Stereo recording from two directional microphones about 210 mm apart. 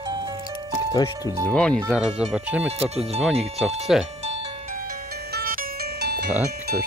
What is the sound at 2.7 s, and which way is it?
Speech, 30° right (ahead or behind).